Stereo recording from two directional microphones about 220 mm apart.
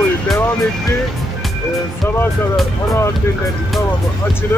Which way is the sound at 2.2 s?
10° left (ahead or behind).